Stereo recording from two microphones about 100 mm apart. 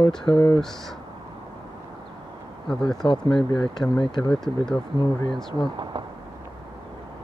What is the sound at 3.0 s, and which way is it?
Speech, 50° left (ahead or behind).